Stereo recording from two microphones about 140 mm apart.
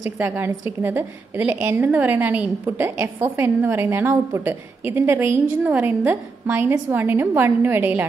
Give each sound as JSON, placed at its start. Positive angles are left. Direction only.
{"t": 0.2, "sound": "a woman's voice", "side_deg": -15}